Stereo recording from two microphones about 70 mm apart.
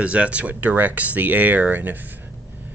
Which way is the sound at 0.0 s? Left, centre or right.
Centre.